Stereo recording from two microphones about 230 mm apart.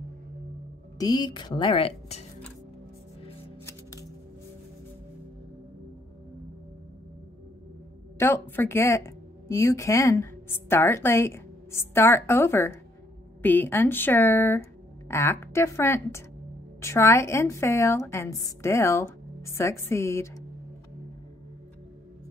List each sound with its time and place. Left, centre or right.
0.9 s a woman's voice: centre
8.2 s a woman's voice: centre